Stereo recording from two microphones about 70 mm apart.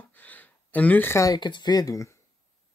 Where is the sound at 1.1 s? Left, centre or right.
Left.